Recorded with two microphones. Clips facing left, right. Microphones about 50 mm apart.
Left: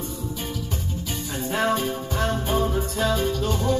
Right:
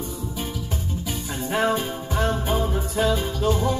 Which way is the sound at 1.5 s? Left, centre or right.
Centre.